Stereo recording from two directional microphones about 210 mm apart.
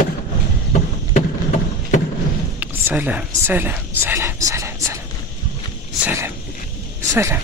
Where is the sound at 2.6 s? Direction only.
10° right (ahead or behind).